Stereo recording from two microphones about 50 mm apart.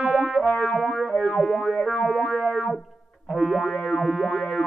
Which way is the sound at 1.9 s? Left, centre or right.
Left.